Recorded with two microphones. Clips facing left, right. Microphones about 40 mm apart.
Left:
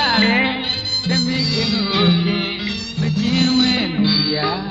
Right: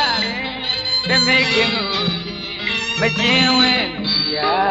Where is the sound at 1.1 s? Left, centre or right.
Right.